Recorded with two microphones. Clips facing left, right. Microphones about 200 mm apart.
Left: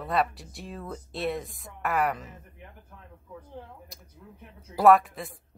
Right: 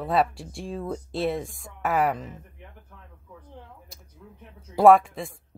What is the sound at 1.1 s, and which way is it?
Speech, centre (ahead or behind).